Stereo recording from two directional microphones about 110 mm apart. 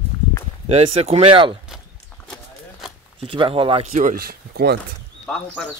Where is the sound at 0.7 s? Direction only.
70° right (ahead or behind).